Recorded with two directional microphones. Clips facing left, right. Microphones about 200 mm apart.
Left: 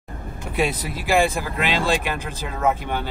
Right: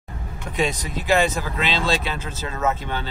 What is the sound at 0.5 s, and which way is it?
Speech, 10° left (ahead or behind).